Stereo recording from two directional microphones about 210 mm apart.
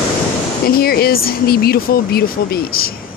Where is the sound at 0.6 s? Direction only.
45° left (ahead or behind).